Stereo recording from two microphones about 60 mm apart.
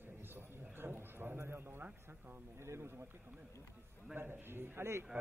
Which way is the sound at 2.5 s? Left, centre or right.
Right.